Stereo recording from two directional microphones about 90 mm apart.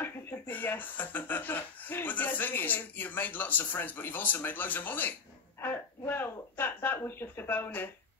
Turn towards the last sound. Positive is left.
turn(degrees=20)  # may be behind; listen again after turning